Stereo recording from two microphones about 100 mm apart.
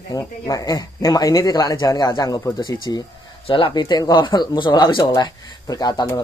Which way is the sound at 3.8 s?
45° left (ahead or behind).